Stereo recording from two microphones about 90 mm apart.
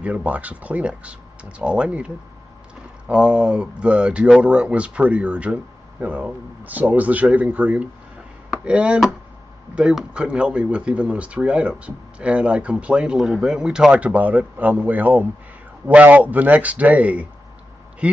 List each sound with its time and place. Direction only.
0.0 s speech: 15° right (ahead or behind)